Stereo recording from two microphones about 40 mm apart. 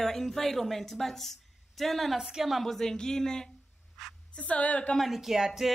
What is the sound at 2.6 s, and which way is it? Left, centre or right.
Speech, centre.